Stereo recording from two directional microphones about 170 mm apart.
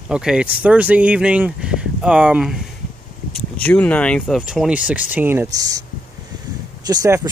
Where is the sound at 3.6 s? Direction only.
10° left (ahead or behind); by 5.8 s 20° right (ahead or behind).